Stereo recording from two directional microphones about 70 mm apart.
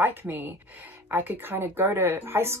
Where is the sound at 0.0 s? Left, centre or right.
Right.